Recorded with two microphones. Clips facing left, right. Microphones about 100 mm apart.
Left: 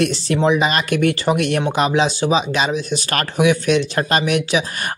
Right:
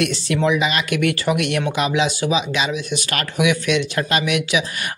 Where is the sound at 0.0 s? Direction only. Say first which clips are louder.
Left 2 dB; 35° left (ahead or behind).